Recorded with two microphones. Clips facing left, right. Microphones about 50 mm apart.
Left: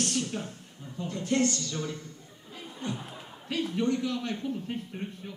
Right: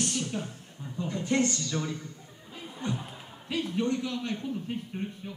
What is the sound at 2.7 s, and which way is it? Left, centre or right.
Chuckle, centre.